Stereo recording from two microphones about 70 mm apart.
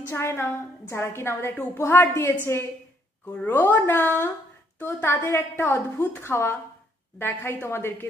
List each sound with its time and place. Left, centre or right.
0.1 s a woman's voice: left